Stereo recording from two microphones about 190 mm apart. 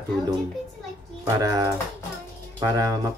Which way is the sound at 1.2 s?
20° right (ahead or behind).